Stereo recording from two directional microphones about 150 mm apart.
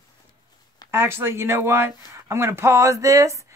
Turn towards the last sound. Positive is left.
turn(degrees=-20)  # may be behind; listen again after turning